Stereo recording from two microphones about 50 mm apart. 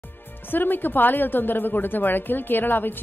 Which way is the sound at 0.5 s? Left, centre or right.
Left.